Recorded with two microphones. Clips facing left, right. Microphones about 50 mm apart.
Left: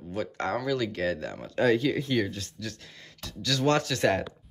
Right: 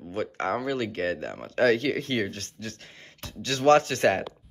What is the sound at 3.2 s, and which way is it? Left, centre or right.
Speech, right.